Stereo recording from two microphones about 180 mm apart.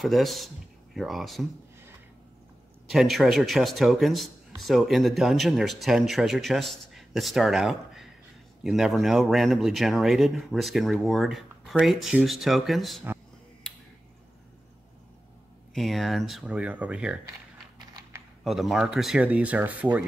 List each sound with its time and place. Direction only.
0.0 s a man's voice: centre (ahead or behind)
2.9 s a man's voice: centre (ahead or behind)
15.7 s a man's voice: centre (ahead or behind)
18.4 s a man's voice: centre (ahead or behind)